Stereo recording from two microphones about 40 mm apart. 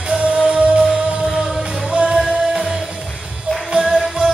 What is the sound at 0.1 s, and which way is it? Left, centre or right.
Music, right.